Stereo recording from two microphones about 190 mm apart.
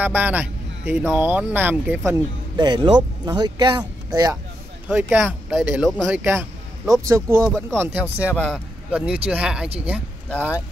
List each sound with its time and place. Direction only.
0.0 s speech: 10° right (ahead or behind)
2.5 s speech: 25° right (ahead or behind)
4.8 s speech: 10° right (ahead or behind)